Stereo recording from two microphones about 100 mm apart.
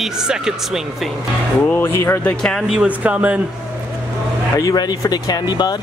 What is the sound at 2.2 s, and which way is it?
Speech, 10° left (ahead or behind).